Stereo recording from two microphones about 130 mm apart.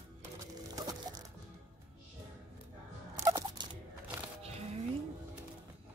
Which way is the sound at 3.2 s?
25° right (ahead or behind).